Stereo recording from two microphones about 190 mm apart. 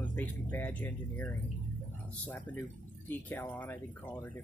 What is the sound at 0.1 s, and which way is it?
Speech, 10° left (ahead or behind).